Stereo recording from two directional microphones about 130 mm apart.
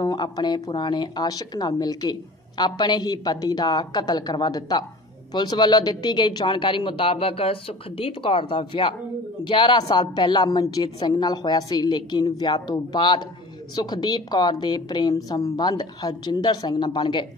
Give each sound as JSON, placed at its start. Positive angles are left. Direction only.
{"t": 0.0, "sound": "speech", "side_deg": 30}